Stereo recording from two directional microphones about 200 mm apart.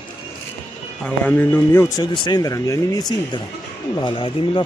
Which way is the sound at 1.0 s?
10° left (ahead or behind).